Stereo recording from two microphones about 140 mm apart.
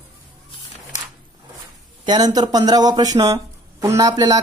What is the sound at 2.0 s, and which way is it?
Speech, 30° right (ahead or behind).